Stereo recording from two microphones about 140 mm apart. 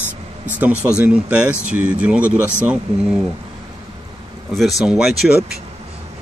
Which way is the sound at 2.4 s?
15° left (ahead or behind).